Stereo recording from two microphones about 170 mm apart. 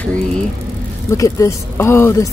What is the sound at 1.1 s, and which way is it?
Speech, 20° left (ahead or behind).